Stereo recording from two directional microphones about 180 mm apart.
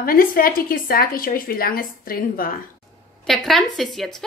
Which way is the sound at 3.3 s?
Centre (ahead or behind).